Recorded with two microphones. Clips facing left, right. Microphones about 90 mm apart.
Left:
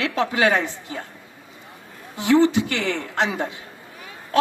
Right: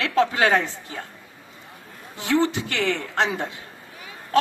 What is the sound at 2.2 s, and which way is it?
Speech, 20° left (ahead or behind).